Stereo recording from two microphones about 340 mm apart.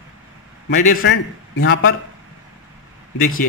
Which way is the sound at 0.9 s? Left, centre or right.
Left.